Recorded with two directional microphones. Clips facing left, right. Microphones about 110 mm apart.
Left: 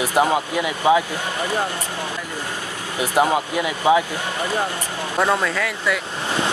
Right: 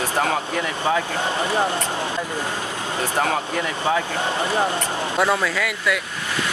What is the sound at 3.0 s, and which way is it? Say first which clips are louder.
Speech: left 5 dB; 15° left (ahead or behind).